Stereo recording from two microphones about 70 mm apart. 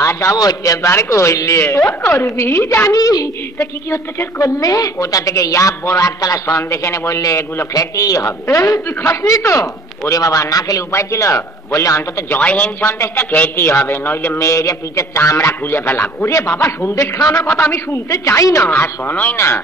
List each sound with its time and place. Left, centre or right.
0.0 s a woman's voice: left
12.4 s speech: centre
12.8 s a man's voice: left
14.4 s a woman's voice: left
15.6 s a man's voice: left
17.2 s speech: left
17.6 s a woman's voice: left
18.8 s speech: left
19.3 s a man's voice: left